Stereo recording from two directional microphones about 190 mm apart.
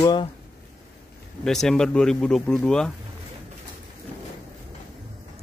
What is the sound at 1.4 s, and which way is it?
Speech, centre (ahead or behind).